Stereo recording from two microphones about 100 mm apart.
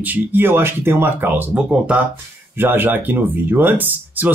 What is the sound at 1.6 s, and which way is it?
Speech, 10° right (ahead or behind).